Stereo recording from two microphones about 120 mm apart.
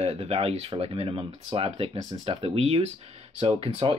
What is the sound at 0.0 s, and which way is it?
Speech, 55° right (ahead or behind).